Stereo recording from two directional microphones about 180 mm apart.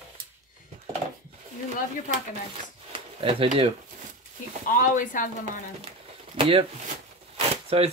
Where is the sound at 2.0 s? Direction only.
45° right (ahead or behind).